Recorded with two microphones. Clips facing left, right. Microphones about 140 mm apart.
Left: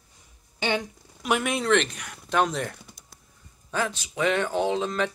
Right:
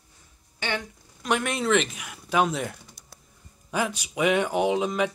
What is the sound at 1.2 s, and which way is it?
Speech, centre (ahead or behind).